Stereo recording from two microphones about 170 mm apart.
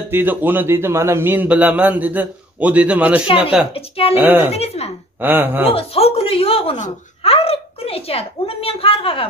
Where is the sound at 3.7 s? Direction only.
35° left (ahead or behind).